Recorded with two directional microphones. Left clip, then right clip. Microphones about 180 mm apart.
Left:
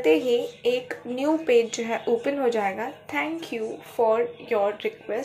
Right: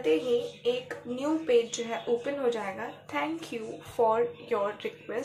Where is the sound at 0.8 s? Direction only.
20° left (ahead or behind).